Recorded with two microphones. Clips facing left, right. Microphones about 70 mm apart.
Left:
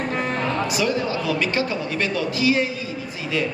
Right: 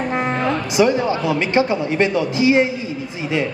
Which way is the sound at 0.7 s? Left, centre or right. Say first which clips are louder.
Right 6 dB; right.